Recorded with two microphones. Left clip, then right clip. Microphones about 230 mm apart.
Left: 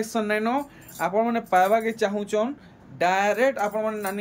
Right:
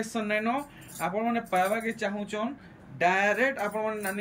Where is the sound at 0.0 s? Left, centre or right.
Centre.